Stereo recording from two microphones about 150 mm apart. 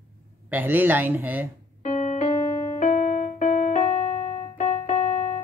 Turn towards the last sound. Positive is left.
turn(degrees=45)  # may be behind; listen again after turning